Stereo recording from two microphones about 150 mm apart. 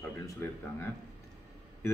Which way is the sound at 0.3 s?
15° left (ahead or behind).